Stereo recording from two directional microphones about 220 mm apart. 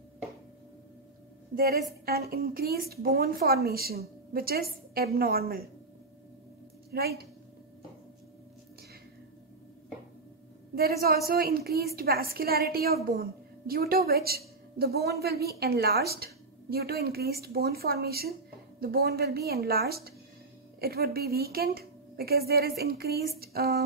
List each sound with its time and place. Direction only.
1.5 s a woman's voice: 45° right (ahead or behind)
6.9 s a woman's voice: 45° right (ahead or behind)
10.7 s a woman's voice: 45° right (ahead or behind)